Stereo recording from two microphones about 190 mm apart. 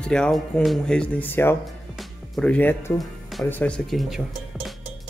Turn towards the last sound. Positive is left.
turn(degrees=0)  # may be behind; listen again after turning